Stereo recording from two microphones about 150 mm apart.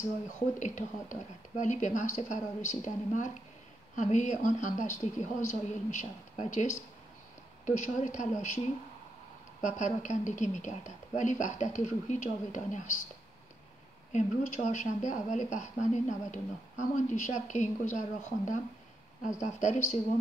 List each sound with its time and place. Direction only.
0.6 s speech: 55° left (ahead or behind)
9.6 s speech: 55° left (ahead or behind)
14.1 s speech: 55° left (ahead or behind)
19.4 s speech: 55° left (ahead or behind)